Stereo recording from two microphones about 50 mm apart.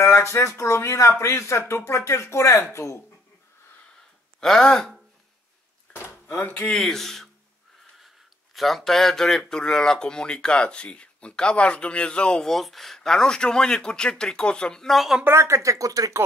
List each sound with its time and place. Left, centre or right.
0.0 s speech: left
1.6 s speech: left
1.9 s speech: left
4.4 s speech: centre
6.2 s speech: left
6.8 s speech: centre
8.5 s speech: centre; by 12.4 s left
12.4 s speech: centre
15.2 s speech: right